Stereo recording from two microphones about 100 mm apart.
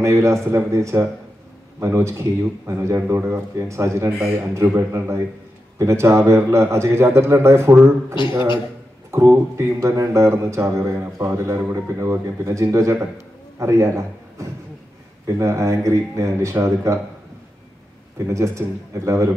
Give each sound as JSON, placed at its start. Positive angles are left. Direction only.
{"t": 0.0, "sound": "a man's voice", "side_deg": -30}
{"t": 9.1, "sound": "a man's voice", "side_deg": -30}
{"t": 18.2, "sound": "a man's voice", "side_deg": -30}